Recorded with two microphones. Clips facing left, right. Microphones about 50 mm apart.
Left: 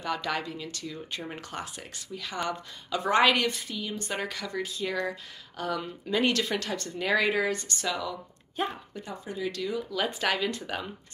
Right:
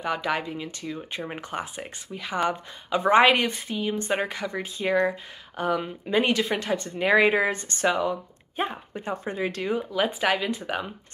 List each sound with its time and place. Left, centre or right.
0.0 s speech: centre
9.1 s speech: right
9.9 s speech: centre